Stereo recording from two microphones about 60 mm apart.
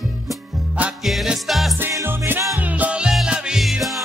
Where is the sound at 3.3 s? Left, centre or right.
Centre.